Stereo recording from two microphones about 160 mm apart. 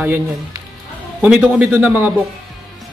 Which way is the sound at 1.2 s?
5° right (ahead or behind).